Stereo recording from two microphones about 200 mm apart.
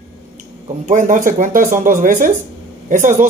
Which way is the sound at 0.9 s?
40° right (ahead or behind).